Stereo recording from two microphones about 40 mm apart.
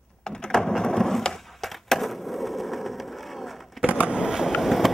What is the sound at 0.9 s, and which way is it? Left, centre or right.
Wood, centre.